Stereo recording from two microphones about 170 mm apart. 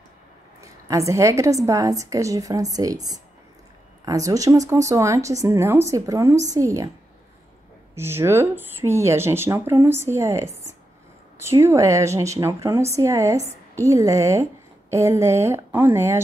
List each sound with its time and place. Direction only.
0.6 s a woman's voice: 20° right (ahead or behind)
7.9 s speech: 15° right (ahead or behind)